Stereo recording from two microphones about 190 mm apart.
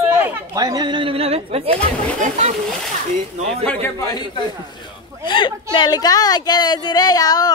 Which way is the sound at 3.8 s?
20° left (ahead or behind).